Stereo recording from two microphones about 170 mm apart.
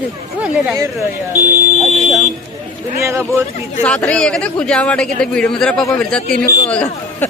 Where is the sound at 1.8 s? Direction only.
Centre (ahead or behind).